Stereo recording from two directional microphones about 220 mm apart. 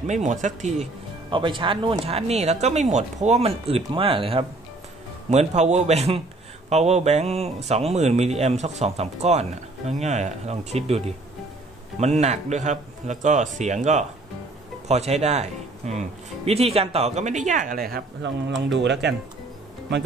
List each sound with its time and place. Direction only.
0.0 s speech: 30° right (ahead or behind); by 19.1 s 50° right (ahead or behind)